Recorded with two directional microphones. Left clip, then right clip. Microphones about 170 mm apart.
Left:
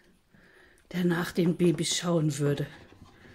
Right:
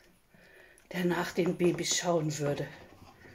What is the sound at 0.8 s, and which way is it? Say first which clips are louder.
Speech: left 1 dB; 30° left (ahead or behind).